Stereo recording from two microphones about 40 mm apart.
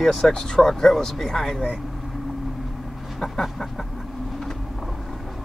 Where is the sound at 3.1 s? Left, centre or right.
Centre.